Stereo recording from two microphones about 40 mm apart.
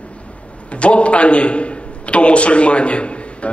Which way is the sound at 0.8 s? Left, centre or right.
Left.